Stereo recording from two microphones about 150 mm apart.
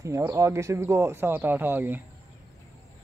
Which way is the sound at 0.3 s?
20° right (ahead or behind).